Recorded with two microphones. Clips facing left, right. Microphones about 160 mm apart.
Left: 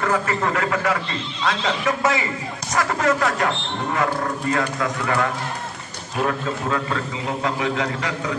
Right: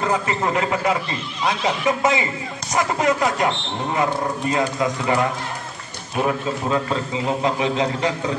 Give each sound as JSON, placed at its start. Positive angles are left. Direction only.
{"t": 0.0, "sound": "speech", "side_deg": -20}